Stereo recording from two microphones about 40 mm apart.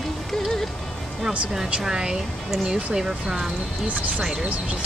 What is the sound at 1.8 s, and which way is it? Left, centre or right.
Speech, centre.